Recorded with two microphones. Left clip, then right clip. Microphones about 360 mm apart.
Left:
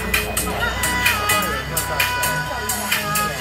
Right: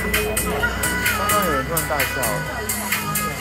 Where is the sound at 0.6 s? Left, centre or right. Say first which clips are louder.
Left 4 dB; centre.